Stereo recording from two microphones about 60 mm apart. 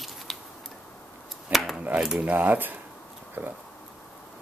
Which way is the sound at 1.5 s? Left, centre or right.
Centre.